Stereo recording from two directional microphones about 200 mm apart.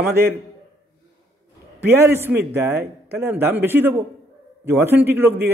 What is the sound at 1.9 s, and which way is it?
A man's voice, 10° right (ahead or behind).